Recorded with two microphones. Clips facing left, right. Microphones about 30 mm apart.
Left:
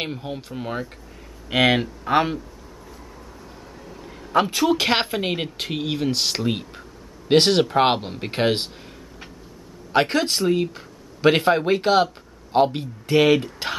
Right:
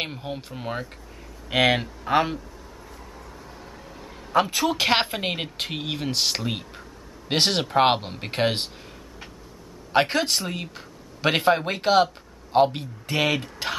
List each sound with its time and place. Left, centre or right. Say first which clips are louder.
0.0 s speech: left 2 dB; centre
3.8 s a woman's voice: left 2 dB; centre
9.9 s speech: left 2 dB; centre